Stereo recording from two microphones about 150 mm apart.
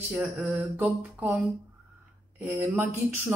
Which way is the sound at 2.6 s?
15° right (ahead or behind).